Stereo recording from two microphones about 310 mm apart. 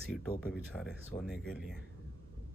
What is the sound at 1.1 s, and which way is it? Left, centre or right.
Speech, left.